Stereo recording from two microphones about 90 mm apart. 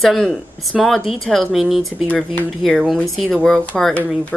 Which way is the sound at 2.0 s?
15° left (ahead or behind).